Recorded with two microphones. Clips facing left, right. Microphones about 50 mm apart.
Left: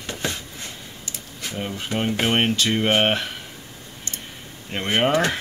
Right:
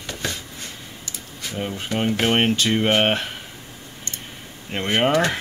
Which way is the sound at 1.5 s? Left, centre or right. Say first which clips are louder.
Right 1 dB; centre.